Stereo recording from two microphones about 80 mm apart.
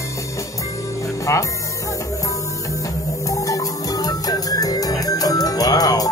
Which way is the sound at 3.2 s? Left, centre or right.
Left.